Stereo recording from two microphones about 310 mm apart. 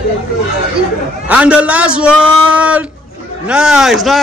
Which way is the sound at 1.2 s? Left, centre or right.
Centre.